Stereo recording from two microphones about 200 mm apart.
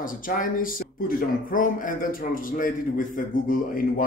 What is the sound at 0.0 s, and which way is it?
Speech, 45° left (ahead or behind).